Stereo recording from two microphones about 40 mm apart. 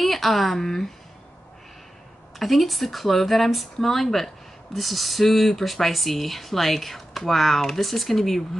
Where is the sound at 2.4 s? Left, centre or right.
Centre.